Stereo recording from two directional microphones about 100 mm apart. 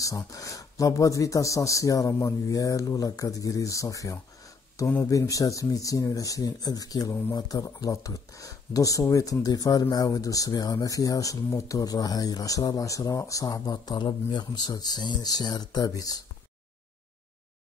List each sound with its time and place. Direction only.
0.0 s speech: 35° left (ahead or behind)